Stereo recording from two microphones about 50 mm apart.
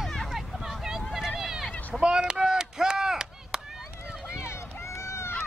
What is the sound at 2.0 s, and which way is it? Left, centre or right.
Chop, centre.